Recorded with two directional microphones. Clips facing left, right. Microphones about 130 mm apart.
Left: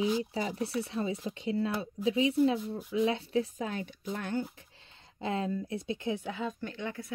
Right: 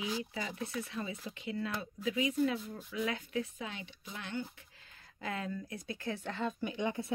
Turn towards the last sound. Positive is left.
turn(degrees=-20)  # may be behind; listen again after turning